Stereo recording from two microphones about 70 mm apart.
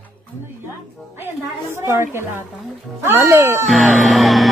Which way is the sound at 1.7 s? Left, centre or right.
Right.